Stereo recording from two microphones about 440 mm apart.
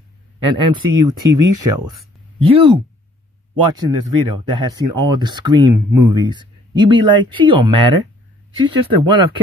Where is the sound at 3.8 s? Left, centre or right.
Right.